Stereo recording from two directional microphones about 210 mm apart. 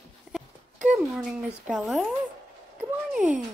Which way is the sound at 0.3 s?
Centre (ahead or behind).